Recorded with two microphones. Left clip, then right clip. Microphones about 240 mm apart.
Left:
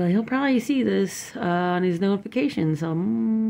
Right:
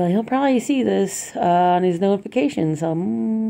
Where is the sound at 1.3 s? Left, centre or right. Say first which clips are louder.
Right 8 dB; left.